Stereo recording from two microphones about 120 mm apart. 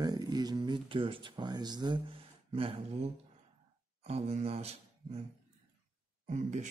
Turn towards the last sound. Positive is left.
turn(degrees=-80)